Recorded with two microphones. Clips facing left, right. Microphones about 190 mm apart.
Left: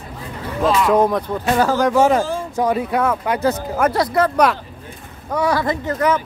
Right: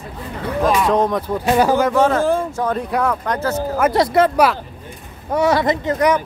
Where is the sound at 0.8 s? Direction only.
5° left (ahead or behind).